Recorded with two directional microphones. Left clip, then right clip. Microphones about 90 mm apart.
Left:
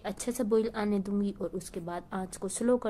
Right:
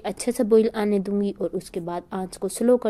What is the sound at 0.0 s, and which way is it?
A woman's voice, 35° right (ahead or behind).